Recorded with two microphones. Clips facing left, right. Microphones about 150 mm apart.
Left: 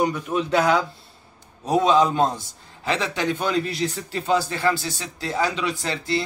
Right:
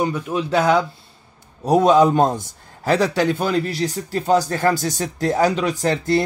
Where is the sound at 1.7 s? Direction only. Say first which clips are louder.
Right 5 dB; 45° right (ahead or behind).